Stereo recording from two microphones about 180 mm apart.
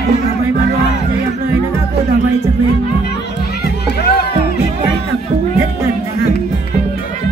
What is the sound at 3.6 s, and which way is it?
Music, 65° left (ahead or behind).